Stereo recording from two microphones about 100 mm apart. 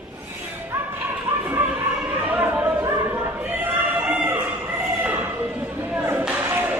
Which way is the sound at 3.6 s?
20° right (ahead or behind).